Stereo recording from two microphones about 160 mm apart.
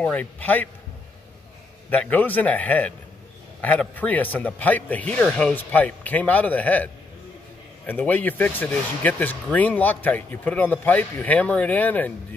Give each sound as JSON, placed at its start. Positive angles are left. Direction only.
{"t": 0.0, "sound": "speech", "side_deg": 10}
{"t": 1.9, "sound": "speech", "side_deg": 10}